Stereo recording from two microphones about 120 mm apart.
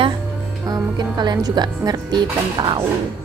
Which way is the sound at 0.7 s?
35° right (ahead or behind).